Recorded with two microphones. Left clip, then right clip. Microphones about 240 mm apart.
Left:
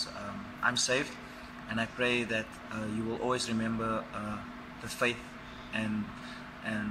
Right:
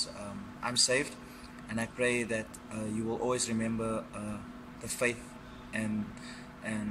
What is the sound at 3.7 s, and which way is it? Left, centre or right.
Speech, centre.